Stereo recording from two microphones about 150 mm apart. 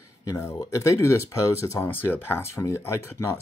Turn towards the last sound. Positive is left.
turn(degrees=15)  # may be behind; listen again after turning